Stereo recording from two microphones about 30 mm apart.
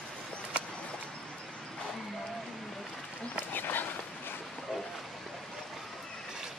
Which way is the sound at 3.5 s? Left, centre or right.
Left.